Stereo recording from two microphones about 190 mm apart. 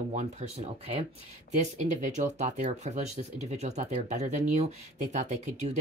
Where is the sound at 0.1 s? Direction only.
40° right (ahead or behind).